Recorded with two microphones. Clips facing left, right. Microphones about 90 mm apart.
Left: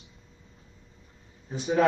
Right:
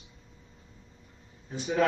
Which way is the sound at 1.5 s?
20° left (ahead or behind).